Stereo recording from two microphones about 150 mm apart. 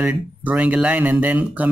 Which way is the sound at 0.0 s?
10° right (ahead or behind).